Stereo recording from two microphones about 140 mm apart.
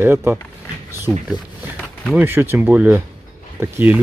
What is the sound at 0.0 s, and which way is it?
Speech, 15° right (ahead or behind).